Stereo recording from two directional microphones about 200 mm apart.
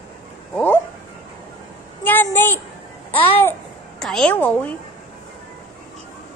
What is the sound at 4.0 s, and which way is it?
Speech, centre (ahead or behind).